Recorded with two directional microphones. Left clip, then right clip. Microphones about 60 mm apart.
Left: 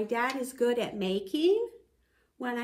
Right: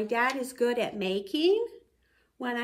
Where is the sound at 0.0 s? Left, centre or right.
Right.